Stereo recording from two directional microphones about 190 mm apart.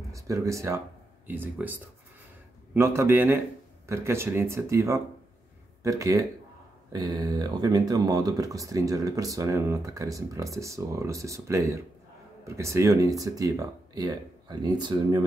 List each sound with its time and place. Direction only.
0.1 s speech: 15° right (ahead or behind)